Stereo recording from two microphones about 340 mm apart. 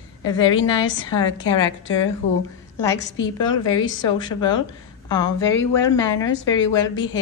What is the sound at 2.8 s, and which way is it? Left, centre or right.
Speech, centre.